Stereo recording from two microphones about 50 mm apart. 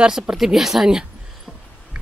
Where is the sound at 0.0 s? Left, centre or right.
Centre.